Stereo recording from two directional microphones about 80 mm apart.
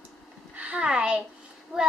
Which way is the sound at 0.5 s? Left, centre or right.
Centre.